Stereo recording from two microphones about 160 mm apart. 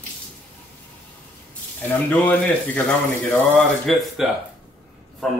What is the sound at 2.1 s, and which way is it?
Speech, 10° left (ahead or behind).